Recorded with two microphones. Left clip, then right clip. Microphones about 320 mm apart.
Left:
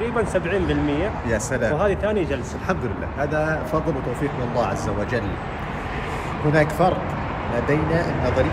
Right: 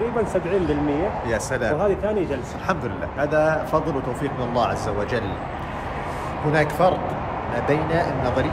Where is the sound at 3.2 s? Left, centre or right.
Centre.